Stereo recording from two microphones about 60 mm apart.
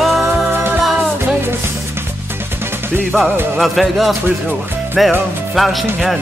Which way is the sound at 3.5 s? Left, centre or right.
Centre.